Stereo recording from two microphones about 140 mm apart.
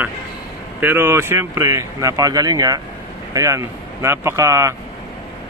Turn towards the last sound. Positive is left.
turn(degrees=-20)  # may be behind; listen again after turning